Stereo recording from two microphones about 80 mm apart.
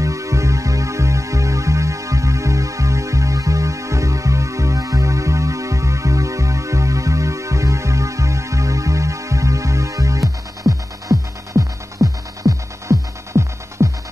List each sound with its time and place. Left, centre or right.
0.0 s music: right
10.6 s throbbing: right